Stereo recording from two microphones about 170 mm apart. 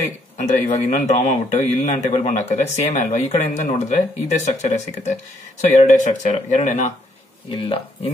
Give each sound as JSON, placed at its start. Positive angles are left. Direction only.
{"t": 0.4, "sound": "a man's voice", "side_deg": 45}
{"t": 7.5, "sound": "speech", "side_deg": 35}